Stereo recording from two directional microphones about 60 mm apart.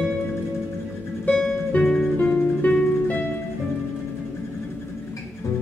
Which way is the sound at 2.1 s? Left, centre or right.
Left.